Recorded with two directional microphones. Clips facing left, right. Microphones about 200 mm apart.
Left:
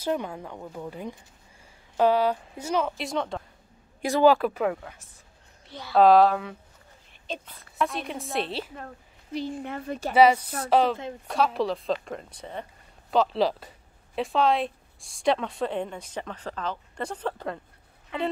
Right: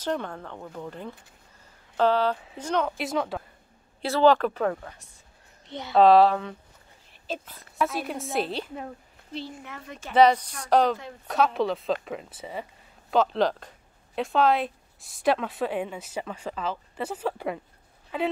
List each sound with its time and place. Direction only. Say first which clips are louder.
0.0 s a woman's voice: left 1 dB; 10° left (ahead or behind)
4.0 s speech: even; 10° left (ahead or behind)
5.7 s a woman's voice: right 5 dB; 20° right (ahead or behind)
5.9 s a woman's voice: even; centre (ahead or behind)
9.6 s speech: left 9 dB; 35° left (ahead or behind)
10.1 s a woman's voice: even; 10° left (ahead or behind); by 17.6 s 10° right (ahead or behind)